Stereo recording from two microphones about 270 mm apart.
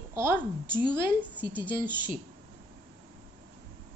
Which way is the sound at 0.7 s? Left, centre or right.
Centre.